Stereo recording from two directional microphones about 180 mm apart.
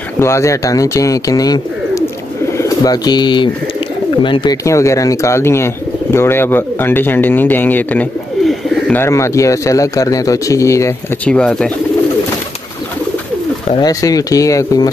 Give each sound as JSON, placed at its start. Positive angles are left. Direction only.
{"t": 0.2, "sound": "speech", "side_deg": 15}
{"t": 4.6, "sound": "speech", "side_deg": 15}
{"t": 13.7, "sound": "speech", "side_deg": 20}